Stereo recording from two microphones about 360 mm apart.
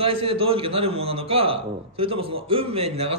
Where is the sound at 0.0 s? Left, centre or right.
Centre.